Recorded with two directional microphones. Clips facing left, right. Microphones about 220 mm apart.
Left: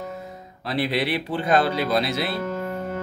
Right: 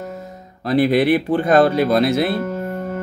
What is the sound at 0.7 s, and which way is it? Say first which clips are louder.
Speech: right 9 dB; 50° right (ahead or behind).